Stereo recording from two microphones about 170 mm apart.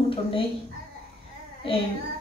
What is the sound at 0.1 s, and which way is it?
Speech, 30° left (ahead or behind).